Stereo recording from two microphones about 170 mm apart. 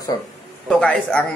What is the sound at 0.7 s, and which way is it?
Speech, 5° left (ahead or behind).